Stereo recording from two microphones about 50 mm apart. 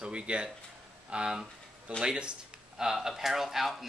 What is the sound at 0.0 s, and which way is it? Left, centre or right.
Speech, right.